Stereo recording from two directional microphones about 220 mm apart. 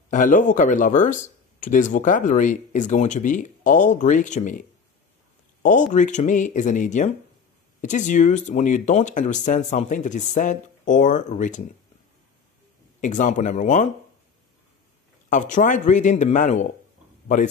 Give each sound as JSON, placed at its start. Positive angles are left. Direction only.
{"t": 0.1, "sound": "speech", "side_deg": 35}
{"t": 13.0, "sound": "speech", "side_deg": 35}
{"t": 15.2, "sound": "speech", "side_deg": 35}